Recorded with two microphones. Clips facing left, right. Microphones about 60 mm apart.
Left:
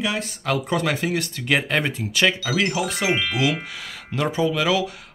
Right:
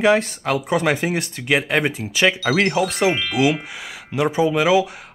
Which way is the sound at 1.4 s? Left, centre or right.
Centre.